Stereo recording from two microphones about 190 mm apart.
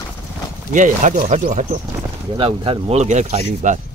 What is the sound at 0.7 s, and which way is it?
Speech, 40° right (ahead or behind).